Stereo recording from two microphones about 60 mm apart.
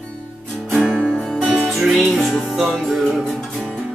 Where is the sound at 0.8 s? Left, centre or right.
Right.